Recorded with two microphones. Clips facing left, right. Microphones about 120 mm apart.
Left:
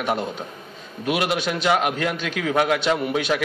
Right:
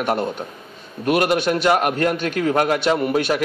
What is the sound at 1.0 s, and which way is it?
Speech, 50° right (ahead or behind).